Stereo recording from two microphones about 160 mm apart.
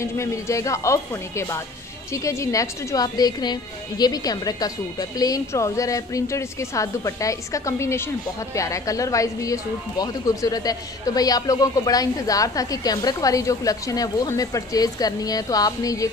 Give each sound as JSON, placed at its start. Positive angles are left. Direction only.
{"t": 0.0, "sound": "speech", "side_deg": 20}